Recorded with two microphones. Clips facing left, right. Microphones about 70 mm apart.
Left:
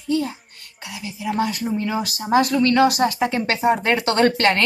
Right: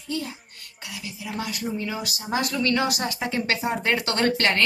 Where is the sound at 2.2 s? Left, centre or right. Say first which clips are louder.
Left 8 dB; left.